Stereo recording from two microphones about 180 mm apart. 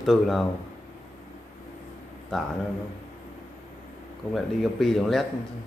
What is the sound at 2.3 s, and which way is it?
Speech, centre (ahead or behind).